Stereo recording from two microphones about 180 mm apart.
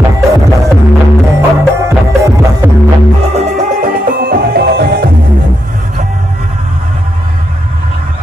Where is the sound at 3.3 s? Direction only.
40° right (ahead or behind); by 5.1 s 65° right (ahead or behind).